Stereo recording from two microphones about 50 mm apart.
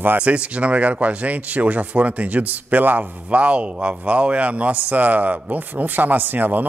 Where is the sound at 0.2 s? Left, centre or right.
Right.